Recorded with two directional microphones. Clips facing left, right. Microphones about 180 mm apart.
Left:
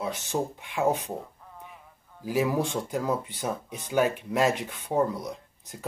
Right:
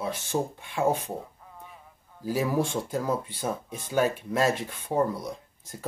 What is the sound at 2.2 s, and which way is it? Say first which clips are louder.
Speech: even; 15° left (ahead or behind).